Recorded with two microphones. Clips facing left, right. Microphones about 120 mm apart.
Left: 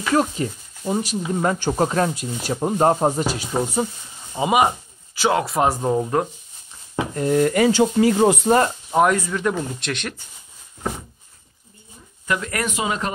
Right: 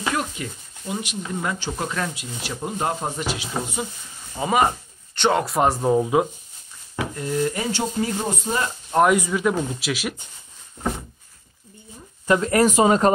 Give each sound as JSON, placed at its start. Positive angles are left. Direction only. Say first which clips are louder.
{"t": 0.1, "sound": "speech", "louder": "left 12 dB", "side_deg": 35}
{"t": 4.3, "sound": "speech", "louder": "left 2 dB", "side_deg": 15}
{"t": 7.2, "sound": "speech", "louder": "left 8 dB", "side_deg": 60}
{"t": 9.1, "sound": "speech", "louder": "right 2 dB", "side_deg": -10}
{"t": 12.3, "sound": "speech", "louder": "right 7 dB", "side_deg": -30}